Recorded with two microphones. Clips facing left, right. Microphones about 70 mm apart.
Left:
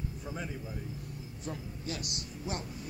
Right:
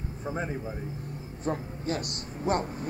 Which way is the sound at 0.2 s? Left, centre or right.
Right.